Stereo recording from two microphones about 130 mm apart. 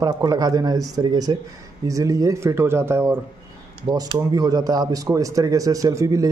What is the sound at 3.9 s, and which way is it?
Speech, 35° right (ahead or behind).